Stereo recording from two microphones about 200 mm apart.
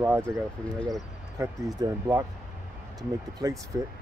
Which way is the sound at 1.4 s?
15° right (ahead or behind).